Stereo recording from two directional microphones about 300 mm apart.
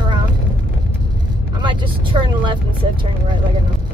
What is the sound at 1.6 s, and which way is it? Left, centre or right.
Speech, centre.